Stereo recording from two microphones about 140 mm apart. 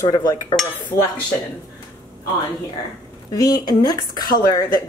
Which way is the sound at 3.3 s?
25° left (ahead or behind).